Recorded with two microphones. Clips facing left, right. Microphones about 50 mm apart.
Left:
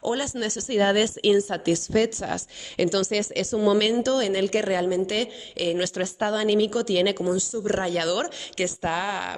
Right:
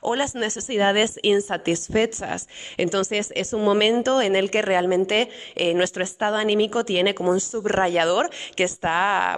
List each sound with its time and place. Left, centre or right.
0.0 s a woman's voice: right